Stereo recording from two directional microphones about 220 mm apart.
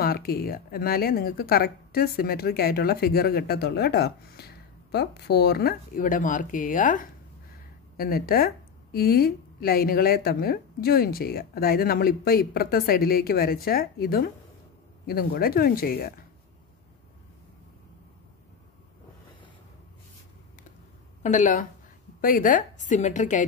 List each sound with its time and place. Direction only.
0.0 s a woman's voice: 45° left (ahead or behind)
21.2 s a woman's voice: 35° left (ahead or behind)